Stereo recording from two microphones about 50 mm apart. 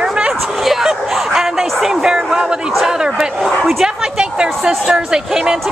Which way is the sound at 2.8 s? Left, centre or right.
Centre.